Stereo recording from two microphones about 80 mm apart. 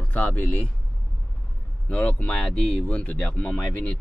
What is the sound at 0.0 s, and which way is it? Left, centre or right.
Speech, left.